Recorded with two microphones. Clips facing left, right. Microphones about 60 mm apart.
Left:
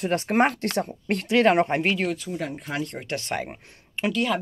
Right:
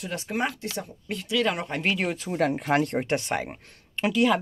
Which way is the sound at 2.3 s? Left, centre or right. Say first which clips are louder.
Right 7 dB; right.